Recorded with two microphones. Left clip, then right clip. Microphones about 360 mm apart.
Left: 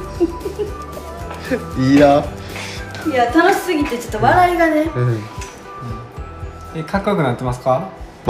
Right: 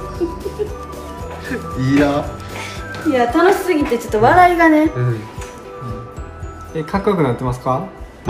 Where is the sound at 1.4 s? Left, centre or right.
Centre.